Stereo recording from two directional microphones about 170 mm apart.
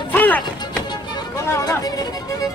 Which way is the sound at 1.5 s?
20° left (ahead or behind).